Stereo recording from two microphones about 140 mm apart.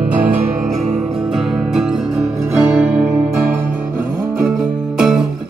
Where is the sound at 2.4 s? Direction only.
15° right (ahead or behind).